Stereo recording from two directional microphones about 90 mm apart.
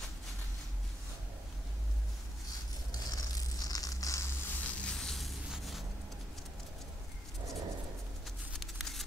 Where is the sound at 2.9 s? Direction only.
45° left (ahead or behind).